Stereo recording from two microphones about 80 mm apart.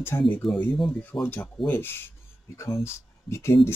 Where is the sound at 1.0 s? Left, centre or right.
Left.